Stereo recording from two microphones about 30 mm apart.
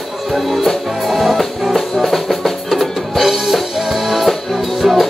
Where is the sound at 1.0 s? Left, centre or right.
Centre.